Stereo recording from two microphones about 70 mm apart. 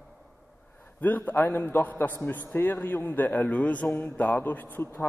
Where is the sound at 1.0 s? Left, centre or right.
Left.